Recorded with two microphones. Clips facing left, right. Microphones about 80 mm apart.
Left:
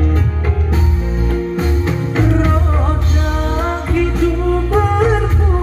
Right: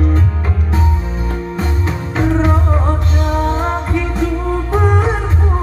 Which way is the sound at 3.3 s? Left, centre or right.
Right.